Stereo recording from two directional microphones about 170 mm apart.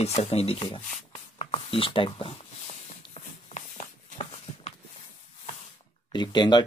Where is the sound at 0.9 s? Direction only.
40° left (ahead or behind).